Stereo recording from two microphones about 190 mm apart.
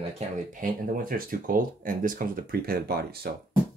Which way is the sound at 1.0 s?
45° right (ahead or behind).